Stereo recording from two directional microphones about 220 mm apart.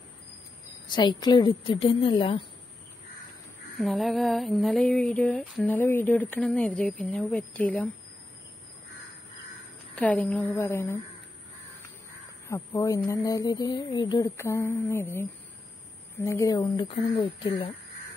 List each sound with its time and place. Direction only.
0.8 s speech: 20° left (ahead or behind)
3.8 s speech: centre (ahead or behind)
9.9 s speech: 5° left (ahead or behind)
12.4 s speech: 10° left (ahead or behind)